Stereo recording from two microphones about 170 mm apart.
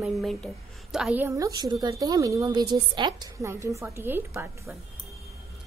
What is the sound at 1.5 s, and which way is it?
A woman's voice, 25° right (ahead or behind).